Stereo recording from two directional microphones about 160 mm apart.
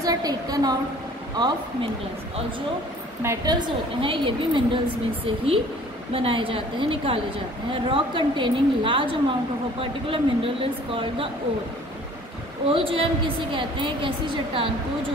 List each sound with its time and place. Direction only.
0.0 s a sound: 25° right (ahead or behind)
1.3 s a woman's voice: 25° right (ahead or behind)
3.2 s a woman's voice: 15° right (ahead or behind)
3.5 s a woman's voice: 30° right (ahead or behind)
12.6 s a woman's voice: 35° right (ahead or behind)